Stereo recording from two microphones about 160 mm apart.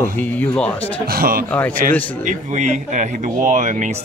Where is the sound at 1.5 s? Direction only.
10° left (ahead or behind).